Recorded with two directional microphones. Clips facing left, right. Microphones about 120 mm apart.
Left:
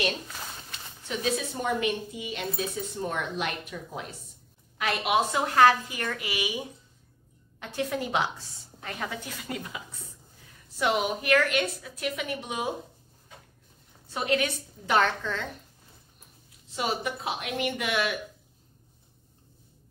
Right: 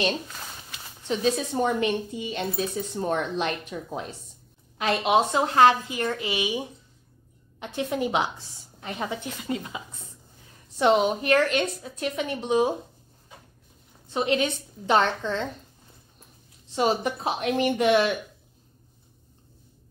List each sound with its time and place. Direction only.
0.3 s a sound: centre (ahead or behind)
1.0 s a woman's voice: 30° right (ahead or behind)
10.8 s a woman's voice: 30° right (ahead or behind)
14.1 s a woman's voice: 25° right (ahead or behind)
16.7 s a woman's voice: 30° right (ahead or behind)